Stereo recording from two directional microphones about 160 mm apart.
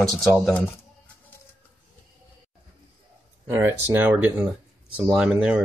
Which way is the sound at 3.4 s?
15° right (ahead or behind).